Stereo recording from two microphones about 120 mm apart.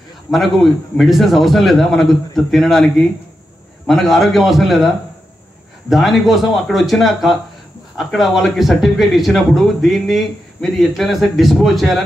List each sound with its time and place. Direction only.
0.3 s speech: centre (ahead or behind)